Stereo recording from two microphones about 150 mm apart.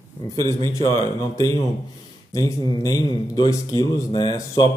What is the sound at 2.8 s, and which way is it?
Speech, 25° left (ahead or behind).